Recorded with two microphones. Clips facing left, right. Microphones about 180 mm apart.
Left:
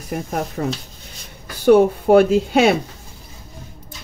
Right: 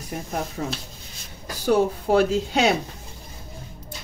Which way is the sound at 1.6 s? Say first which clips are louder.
Left 8 dB; 60° left (ahead or behind).